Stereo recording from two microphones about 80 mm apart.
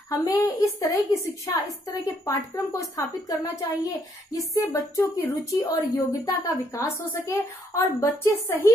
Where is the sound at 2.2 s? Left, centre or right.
Left.